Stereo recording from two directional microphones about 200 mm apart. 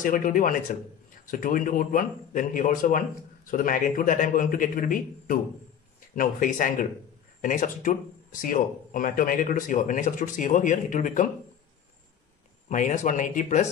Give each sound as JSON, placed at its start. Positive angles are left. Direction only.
{"t": 0.0, "sound": "speech", "side_deg": 45}
{"t": 12.6, "sound": "speech", "side_deg": 40}